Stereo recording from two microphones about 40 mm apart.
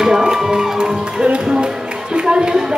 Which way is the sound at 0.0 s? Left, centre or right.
Centre.